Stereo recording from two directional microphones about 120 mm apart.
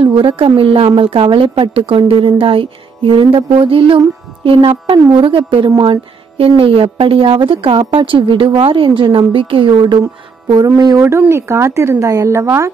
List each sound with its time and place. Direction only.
0.0 s a woman's voice: 45° right (ahead or behind)
6.3 s a woman's voice: 50° right (ahead or behind)
10.5 s speech: 35° right (ahead or behind)
11.1 s speech: 20° right (ahead or behind)